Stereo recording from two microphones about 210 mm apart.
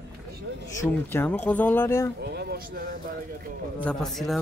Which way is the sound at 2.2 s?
50° right (ahead or behind).